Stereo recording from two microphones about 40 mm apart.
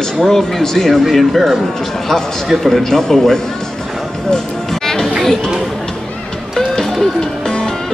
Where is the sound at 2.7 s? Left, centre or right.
Centre.